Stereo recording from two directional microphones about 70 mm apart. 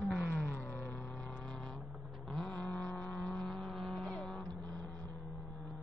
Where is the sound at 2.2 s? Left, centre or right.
Centre.